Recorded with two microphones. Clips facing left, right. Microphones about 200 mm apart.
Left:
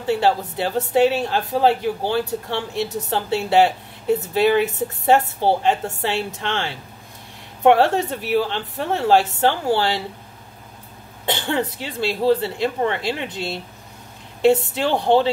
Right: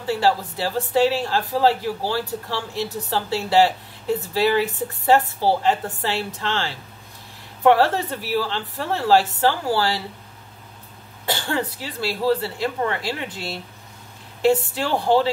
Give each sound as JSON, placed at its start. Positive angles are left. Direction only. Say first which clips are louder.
{"t": 0.0, "sound": "a woman's voice", "louder": "left 2 dB", "side_deg": 20}
{"t": 11.2, "sound": "a woman's voice", "louder": "left 2 dB", "side_deg": 20}